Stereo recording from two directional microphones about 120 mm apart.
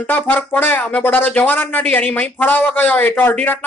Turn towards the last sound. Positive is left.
turn(degrees=15)  # may be behind; listen again after turning